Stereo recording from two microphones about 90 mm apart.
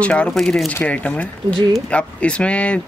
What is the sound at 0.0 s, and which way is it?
Speech, 15° left (ahead or behind).